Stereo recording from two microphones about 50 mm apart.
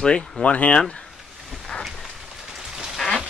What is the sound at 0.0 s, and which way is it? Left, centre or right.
Speech, centre.